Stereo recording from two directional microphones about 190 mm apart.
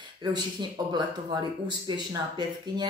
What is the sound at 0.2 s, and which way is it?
Speech, 20° right (ahead or behind).